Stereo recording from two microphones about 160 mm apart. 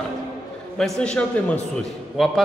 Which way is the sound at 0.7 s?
5° left (ahead or behind).